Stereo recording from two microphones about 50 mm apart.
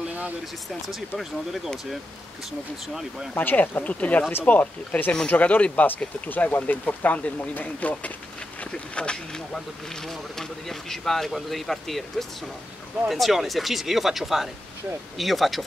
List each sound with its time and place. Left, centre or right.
0.8 s speech: centre
2.9 s speech: centre
3.3 s speech: left; by 15.6 s centre